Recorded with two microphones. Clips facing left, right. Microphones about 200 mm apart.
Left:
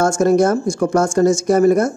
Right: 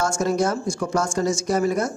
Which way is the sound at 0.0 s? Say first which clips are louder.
Left 8 dB; 50° left (ahead or behind).